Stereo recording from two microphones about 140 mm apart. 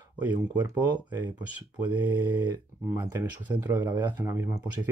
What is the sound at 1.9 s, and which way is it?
Speech, 15° right (ahead or behind).